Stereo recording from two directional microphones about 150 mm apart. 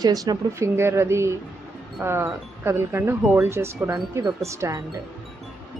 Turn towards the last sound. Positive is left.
turn(degrees=-20)  # may be behind; listen again after turning